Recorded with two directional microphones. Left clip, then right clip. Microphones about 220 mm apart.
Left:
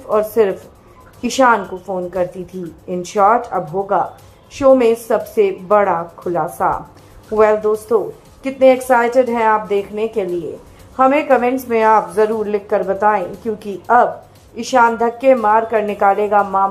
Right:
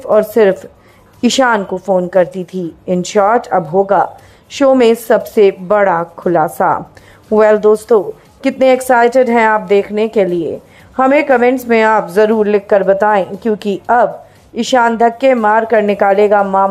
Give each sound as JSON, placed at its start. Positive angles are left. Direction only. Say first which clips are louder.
{"t": 0.1, "sound": "a woman's voice", "louder": "right 5 dB", "side_deg": -40}